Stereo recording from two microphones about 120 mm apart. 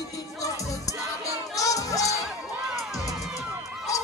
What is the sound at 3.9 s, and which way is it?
Honk, 25° left (ahead or behind).